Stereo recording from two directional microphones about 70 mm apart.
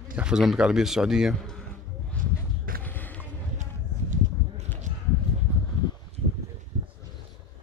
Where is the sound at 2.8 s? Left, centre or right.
Left.